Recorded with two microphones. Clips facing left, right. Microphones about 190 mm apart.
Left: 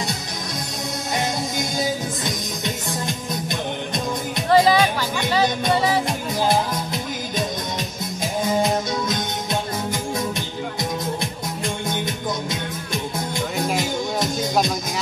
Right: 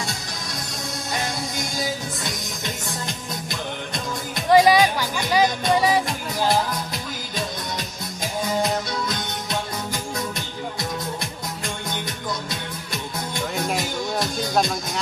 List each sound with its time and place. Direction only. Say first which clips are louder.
1.1 s music: left 4 dB; 20° left (ahead or behind)
4.5 s music: right 1 dB; 15° right (ahead or behind)
6.0 s music: left 2 dB; 20° left (ahead or behind)
8.5 s music: left 3 dB; 20° left (ahead or behind)
12.4 s music: left 4 dB; 20° left (ahead or behind)
13.6 s music: left 2 dB; centre (ahead or behind)